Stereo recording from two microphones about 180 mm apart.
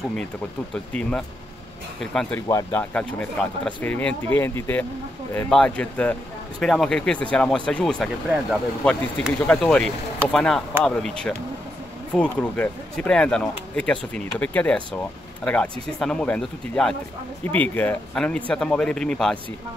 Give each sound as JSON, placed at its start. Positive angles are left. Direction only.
{"t": 2.0, "sound": "speech", "side_deg": 5}
{"t": 2.4, "sound": "speech", "side_deg": 20}
{"t": 2.8, "sound": "speech", "side_deg": 5}